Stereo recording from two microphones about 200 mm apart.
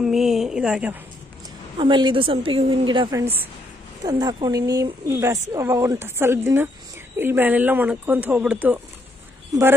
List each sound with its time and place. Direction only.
0.0 s a woman's voice: centre (ahead or behind)
1.8 s a woman's voice: 25° right (ahead or behind)